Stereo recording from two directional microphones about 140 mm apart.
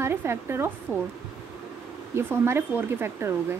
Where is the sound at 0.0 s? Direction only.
15° right (ahead or behind).